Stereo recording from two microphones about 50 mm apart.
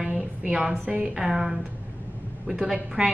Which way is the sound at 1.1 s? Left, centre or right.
Centre.